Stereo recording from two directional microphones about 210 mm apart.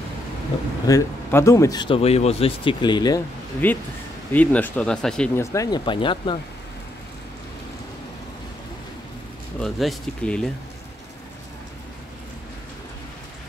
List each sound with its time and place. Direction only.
0.8 s speech: 15° left (ahead or behind)
3.6 s speech: 10° left (ahead or behind)
9.6 s speech: centre (ahead or behind)